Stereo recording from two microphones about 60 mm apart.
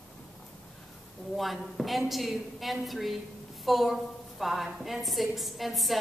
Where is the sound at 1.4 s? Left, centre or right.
Centre.